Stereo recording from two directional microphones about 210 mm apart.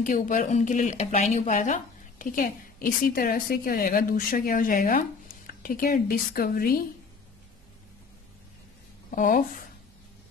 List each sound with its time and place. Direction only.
0.0 s speech: 40° left (ahead or behind)
9.1 s speech: 40° left (ahead or behind)